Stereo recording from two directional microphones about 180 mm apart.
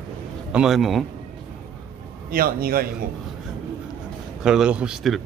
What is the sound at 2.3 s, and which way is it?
Speech, 55° right (ahead or behind).